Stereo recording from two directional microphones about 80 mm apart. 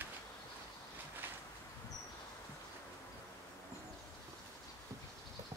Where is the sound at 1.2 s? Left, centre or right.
Right.